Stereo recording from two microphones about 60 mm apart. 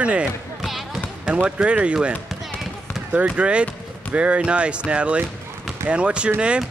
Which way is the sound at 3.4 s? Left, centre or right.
Centre.